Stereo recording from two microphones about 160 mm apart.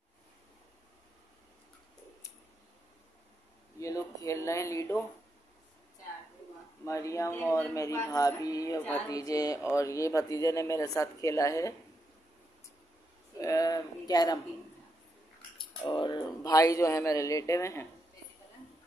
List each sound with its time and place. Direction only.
3.8 s speech: 20° left (ahead or behind)
6.8 s speech: 20° left (ahead or behind)
13.4 s speech: 20° left (ahead or behind)
15.8 s speech: 30° left (ahead or behind)